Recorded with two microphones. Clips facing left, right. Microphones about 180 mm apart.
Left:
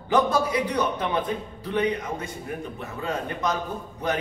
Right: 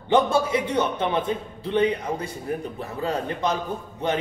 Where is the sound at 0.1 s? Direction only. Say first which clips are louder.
Right 2 dB; 25° right (ahead or behind).